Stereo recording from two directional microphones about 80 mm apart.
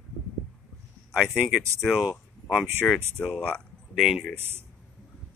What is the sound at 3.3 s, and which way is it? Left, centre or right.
Speech, centre.